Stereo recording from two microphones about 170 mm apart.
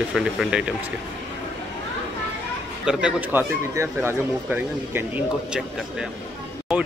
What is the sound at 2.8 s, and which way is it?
Speech, 5° right (ahead or behind).